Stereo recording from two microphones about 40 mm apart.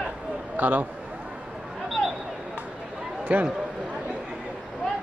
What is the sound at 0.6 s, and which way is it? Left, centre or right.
Speech, right.